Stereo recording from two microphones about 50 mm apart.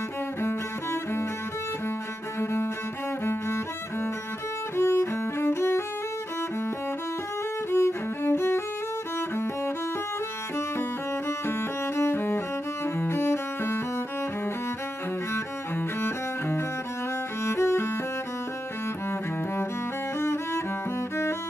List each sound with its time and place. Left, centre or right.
2.4 s cello: left
3.3 s music: left
4.7 s cello: left
7.7 s music: left
10.8 s cello: left
16.0 s cello: left
17.5 s cello: left
20.2 s cello: left